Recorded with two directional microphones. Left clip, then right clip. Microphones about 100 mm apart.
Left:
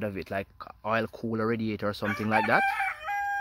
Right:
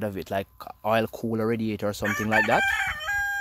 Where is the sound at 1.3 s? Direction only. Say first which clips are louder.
Right 1 dB; 20° right (ahead or behind).